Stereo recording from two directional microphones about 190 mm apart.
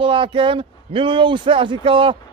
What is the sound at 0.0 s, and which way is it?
A man's voice, 25° right (ahead or behind).